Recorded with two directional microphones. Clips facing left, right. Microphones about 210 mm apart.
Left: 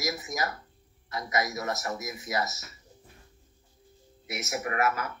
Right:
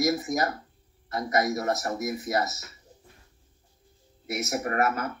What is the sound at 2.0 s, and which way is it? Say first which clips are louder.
Speech: right 5 dB; 55° right (ahead or behind).